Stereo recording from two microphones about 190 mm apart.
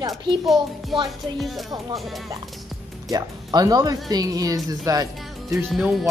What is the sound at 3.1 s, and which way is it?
Speech, 20° right (ahead or behind).